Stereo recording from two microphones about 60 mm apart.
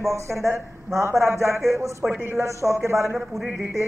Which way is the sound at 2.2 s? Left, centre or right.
Right.